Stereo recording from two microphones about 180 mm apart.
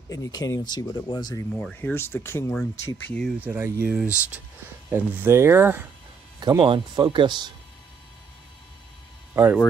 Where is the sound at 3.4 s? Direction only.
10° right (ahead or behind).